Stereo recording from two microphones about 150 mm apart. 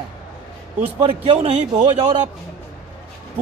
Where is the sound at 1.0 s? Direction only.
40° right (ahead or behind).